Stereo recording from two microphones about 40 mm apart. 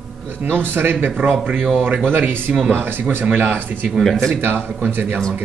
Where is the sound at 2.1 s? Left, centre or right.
Right.